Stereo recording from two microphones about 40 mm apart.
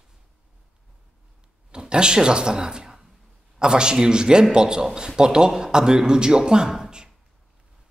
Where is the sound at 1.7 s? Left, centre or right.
Right.